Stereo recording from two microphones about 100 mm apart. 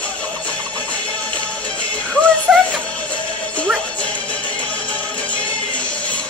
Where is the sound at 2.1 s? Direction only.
10° left (ahead or behind).